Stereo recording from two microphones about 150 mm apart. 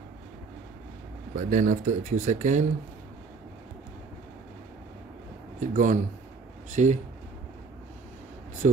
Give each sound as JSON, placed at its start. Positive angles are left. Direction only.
{"t": 1.3, "sound": "speech", "side_deg": -55}
{"t": 5.6, "sound": "speech", "side_deg": -55}